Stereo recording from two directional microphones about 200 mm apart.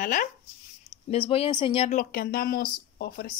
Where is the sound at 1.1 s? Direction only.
30° left (ahead or behind).